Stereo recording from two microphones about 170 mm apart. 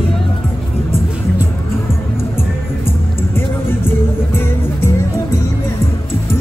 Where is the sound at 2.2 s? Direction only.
15° left (ahead or behind).